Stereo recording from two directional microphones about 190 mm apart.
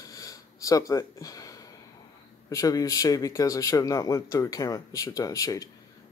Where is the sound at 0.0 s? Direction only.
20° left (ahead or behind).